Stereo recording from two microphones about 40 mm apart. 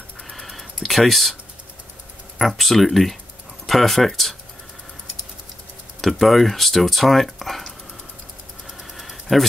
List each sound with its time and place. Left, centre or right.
0.3 s whispering: centre
0.7 s speech: centre
2.3 s speech: centre
5.9 s speech: centre
8.9 s a sound: centre